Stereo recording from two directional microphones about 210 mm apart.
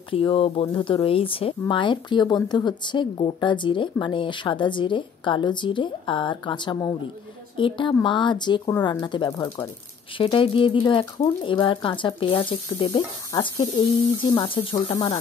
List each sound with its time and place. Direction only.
0.1 s speech: 25° left (ahead or behind)